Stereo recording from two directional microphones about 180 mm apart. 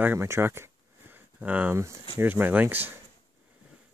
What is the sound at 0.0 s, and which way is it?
Speech, 10° right (ahead or behind).